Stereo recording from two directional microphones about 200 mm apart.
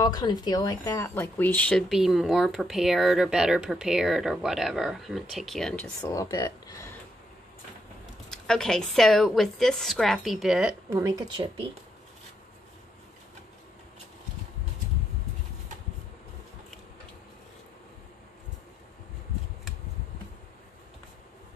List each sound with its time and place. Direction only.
0.0 s speech: 20° left (ahead or behind); by 5.9 s 5° left (ahead or behind)
6.0 s speech: 20° left (ahead or behind)
8.3 s speech: 5° left (ahead or behind)
11.0 s speech: 15° right (ahead or behind)